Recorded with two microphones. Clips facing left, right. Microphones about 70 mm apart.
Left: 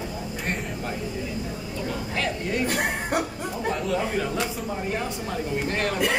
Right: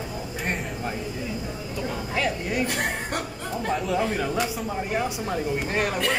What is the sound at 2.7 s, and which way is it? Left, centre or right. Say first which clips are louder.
Speech: left 3 dB; centre.